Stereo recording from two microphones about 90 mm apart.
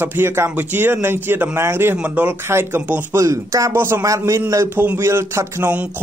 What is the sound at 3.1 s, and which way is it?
Speech, 35° right (ahead or behind).